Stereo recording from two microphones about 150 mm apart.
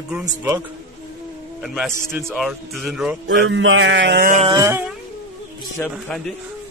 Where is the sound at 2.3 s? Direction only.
Centre (ahead or behind).